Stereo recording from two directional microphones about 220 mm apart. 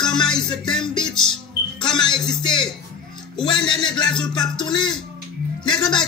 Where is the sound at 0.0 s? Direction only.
20° left (ahead or behind).